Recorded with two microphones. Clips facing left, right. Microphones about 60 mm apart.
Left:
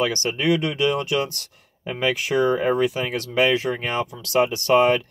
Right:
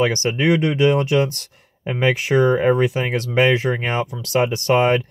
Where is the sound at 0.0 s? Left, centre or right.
Right.